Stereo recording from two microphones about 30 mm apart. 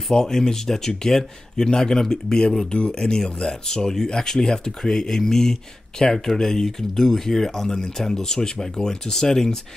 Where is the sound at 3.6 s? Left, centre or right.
Centre.